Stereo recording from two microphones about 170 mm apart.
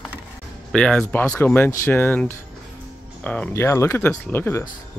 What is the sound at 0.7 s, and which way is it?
Speech, 5° left (ahead or behind).